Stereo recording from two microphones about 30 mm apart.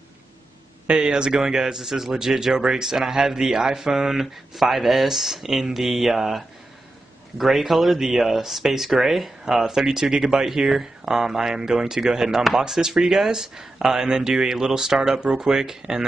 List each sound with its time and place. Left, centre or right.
0.8 s speech: right
1.3 s a man's voice: centre